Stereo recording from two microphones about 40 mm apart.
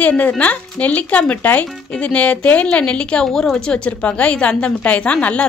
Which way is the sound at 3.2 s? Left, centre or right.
Centre.